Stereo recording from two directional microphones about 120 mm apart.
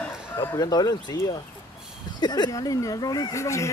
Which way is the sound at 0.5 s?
30° left (ahead or behind).